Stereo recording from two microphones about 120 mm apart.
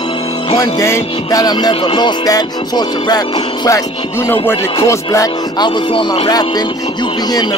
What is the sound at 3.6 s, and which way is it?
Music, 25° left (ahead or behind).